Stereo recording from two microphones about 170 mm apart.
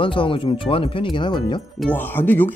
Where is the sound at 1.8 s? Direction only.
10° left (ahead or behind).